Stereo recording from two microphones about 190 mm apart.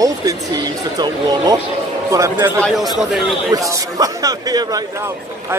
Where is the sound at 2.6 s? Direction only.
Centre (ahead or behind).